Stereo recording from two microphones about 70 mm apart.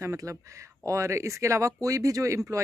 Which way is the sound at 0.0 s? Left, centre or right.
Right.